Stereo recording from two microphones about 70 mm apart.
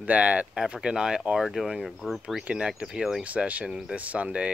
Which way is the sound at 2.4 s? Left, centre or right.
Centre.